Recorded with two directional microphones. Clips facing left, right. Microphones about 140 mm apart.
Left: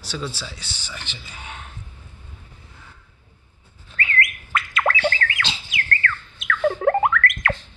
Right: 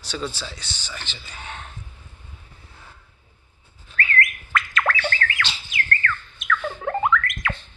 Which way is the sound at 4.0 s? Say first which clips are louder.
Right 1 dB; 25° left (ahead or behind).